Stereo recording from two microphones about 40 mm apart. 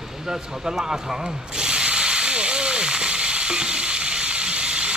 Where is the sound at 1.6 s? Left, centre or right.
Right.